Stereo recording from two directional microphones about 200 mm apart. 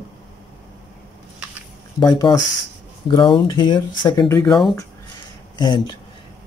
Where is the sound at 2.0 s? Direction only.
20° left (ahead or behind).